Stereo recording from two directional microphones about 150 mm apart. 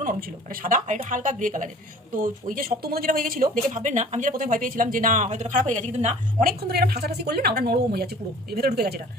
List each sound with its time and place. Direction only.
0.0 s speech: 65° right (ahead or behind); by 6.1 s 45° right (ahead or behind)
6.4 s a woman's voice: 90° right